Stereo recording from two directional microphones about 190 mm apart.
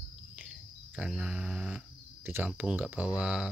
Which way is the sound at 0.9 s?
5° right (ahead or behind).